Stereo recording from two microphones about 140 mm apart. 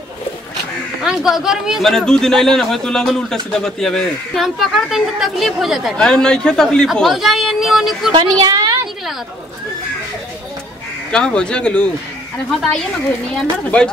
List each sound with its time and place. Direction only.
1.0 s a man's voice: 5° right (ahead or behind)
8.1 s a woman's voice: 30° right (ahead or behind)
11.1 s speech: 5° left (ahead or behind)
13.7 s speech: 10° left (ahead or behind)